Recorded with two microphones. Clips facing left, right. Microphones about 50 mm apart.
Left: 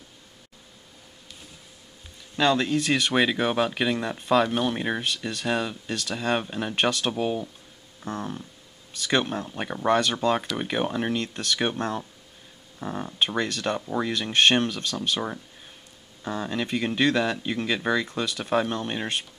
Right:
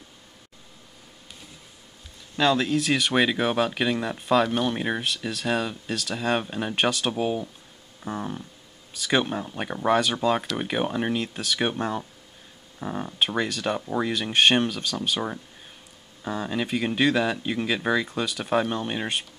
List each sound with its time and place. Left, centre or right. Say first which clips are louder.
2.3 s speech: even; centre